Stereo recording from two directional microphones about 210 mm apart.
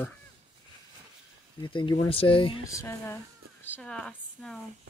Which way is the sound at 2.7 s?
15° left (ahead or behind).